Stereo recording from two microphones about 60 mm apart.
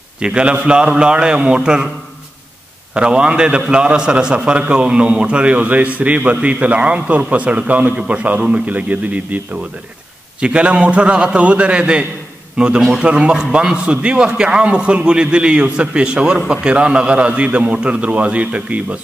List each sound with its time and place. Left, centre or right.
0.2 s a man's voice: centre
2.9 s a man's voice: centre
10.4 s a man's voice: centre